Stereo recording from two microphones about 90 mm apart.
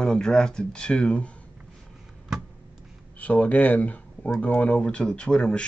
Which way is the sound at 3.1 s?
15° left (ahead or behind).